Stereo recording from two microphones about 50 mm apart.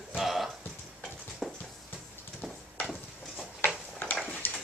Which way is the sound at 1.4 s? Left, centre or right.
Centre.